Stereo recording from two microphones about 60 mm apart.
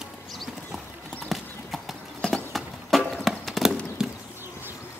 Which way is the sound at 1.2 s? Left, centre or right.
Centre.